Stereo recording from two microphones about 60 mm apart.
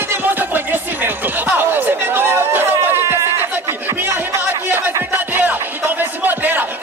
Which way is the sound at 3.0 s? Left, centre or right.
Right.